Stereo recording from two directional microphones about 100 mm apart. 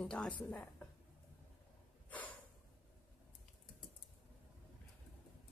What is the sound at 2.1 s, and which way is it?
Snort, 15° left (ahead or behind).